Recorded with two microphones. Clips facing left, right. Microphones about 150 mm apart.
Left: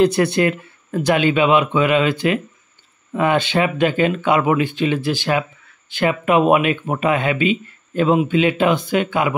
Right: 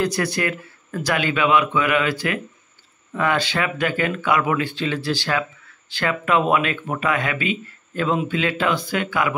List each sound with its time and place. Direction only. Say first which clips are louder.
0.0 s speech: left 7 dB; 25° left (ahead or behind)